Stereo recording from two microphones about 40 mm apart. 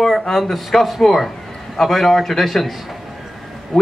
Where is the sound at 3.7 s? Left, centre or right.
Left.